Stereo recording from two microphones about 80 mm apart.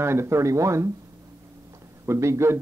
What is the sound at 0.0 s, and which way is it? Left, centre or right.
Speech, right.